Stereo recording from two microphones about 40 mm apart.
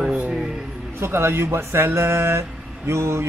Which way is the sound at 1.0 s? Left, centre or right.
Right.